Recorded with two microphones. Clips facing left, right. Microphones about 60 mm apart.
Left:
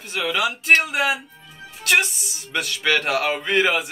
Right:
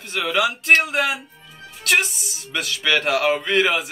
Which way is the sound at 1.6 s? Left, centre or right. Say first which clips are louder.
Even; centre.